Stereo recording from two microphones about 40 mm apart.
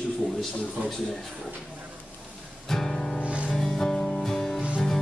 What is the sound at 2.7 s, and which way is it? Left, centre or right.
Music, centre.